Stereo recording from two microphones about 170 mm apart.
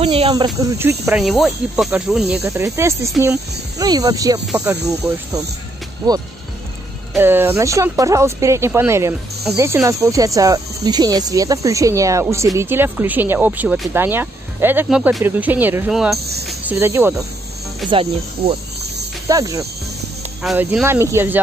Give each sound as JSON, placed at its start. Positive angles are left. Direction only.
{"t": 0.0, "sound": "snake", "side_deg": -35}
{"t": 0.6, "sound": "speech", "side_deg": -15}
{"t": 1.2, "sound": "speech", "side_deg": 0}
{"t": 2.4, "sound": "speech", "side_deg": -15}
{"t": 7.2, "sound": "speech", "side_deg": -15}
{"t": 16.7, "sound": "speech", "side_deg": -15}
{"t": 17.8, "sound": "snake", "side_deg": -30}
{"t": 19.2, "sound": "insect", "side_deg": -20}
{"t": 20.4, "sound": "speech", "side_deg": -5}
{"t": 20.8, "sound": "speech", "side_deg": -15}